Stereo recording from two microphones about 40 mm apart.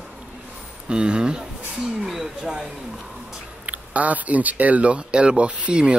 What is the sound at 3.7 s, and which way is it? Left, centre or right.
Speech, right.